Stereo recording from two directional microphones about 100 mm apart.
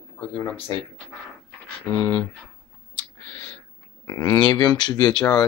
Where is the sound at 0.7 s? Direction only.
35° left (ahead or behind).